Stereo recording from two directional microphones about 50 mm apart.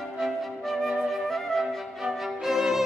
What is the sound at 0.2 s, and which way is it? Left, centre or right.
Music, centre.